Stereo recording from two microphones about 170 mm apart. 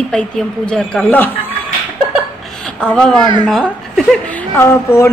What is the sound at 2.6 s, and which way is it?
A woman's voice, 5° left (ahead or behind).